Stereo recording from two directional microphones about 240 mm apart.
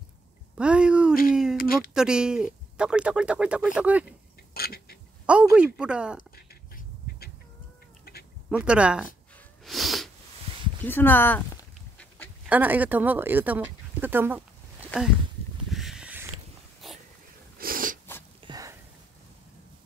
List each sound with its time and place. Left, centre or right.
0.6 s speech: centre
4.6 s duck: left
5.2 s speech: centre
6.3 s a sound: left
8.0 s duck: left
8.5 s speech: centre
9.7 s sneeze: centre
10.9 s a sound: centre
12.4 s speech: centre
15.7 s a sound: centre
17.6 s snort: right
18.4 s a sound: centre